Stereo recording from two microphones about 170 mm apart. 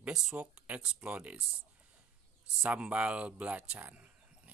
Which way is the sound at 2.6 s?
5° right (ahead or behind).